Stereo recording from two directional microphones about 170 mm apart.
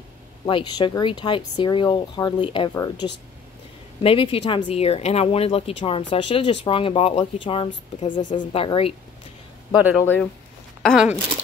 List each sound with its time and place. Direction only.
0.5 s speech: 30° left (ahead or behind)
2.7 s speech: 20° left (ahead or behind)
4.0 s speech: 35° left (ahead or behind)
8.1 s speech: 45° left (ahead or behind)
8.4 s speech: 30° left (ahead or behind)
9.8 s speech: 5° right (ahead or behind)